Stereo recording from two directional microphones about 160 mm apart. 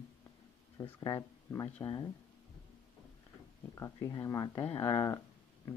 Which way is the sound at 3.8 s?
20° left (ahead or behind).